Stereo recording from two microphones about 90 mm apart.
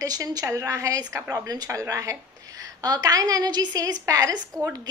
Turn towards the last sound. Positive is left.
turn(degrees=-45)  # may be behind; listen again after turning